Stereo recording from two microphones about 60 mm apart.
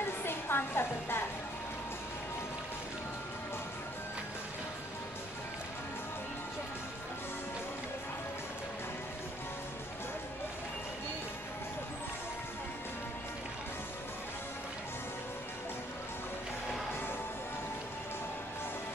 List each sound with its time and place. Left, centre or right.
0.2 s music: left